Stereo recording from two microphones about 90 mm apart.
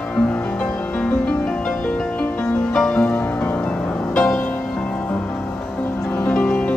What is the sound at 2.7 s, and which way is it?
Music, 10° left (ahead or behind).